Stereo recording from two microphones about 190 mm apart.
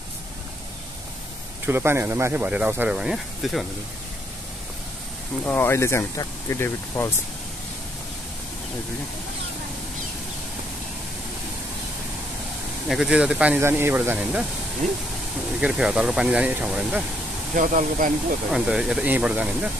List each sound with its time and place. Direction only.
1.7 s speech: 10° right (ahead or behind)
5.4 s speech: 10° left (ahead or behind)
12.8 s speech: centre (ahead or behind)
15.6 s speech: 5° right (ahead or behind)
17.6 s speech: 40° right (ahead or behind)
18.5 s speech: 5° right (ahead or behind)